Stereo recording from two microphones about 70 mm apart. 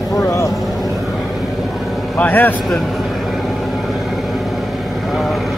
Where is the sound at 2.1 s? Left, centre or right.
Left.